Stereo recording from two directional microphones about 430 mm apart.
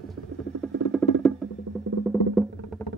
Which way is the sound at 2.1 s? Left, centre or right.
Centre.